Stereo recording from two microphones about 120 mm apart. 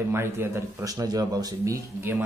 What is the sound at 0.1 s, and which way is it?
Speech, 20° right (ahead or behind).